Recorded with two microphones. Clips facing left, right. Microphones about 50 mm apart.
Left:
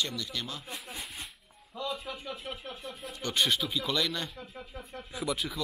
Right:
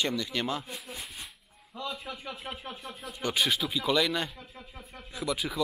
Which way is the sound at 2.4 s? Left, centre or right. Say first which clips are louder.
Right 1 dB; right.